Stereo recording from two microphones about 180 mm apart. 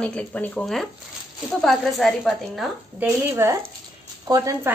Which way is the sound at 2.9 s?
15° right (ahead or behind).